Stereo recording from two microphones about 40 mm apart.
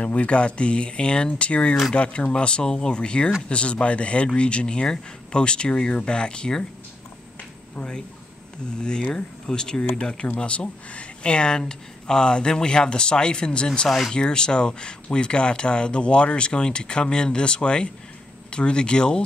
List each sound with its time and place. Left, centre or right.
0.0 s speech: left
8.8 s speech: centre
10.2 s speech: left